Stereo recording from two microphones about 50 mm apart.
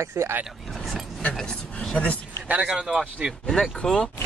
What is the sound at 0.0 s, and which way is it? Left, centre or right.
Speech, right.